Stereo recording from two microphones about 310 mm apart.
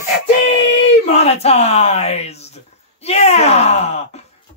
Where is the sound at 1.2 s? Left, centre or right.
Centre.